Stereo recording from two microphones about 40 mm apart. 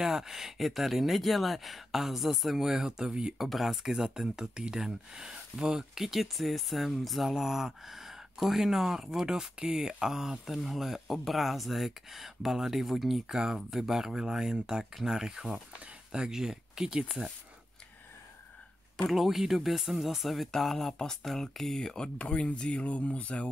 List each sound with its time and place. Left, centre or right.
0.0 s speech: centre
3.3 s speech: centre
7.3 s speech: centre
19.0 s speech: centre
20.5 s speech: centre; by 23.5 s left